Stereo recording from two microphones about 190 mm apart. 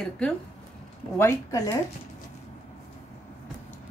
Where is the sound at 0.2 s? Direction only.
5° left (ahead or behind).